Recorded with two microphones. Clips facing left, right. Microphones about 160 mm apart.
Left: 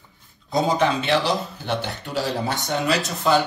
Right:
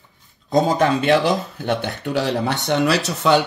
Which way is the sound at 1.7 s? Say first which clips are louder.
Right 6 dB; 60° right (ahead or behind).